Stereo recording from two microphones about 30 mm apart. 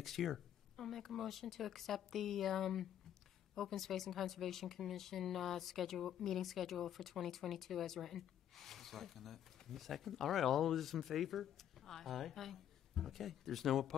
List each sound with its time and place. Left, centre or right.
0.0 s speech: centre